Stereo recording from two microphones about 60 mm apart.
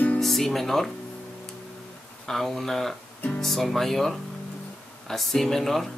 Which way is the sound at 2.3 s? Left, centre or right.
Centre.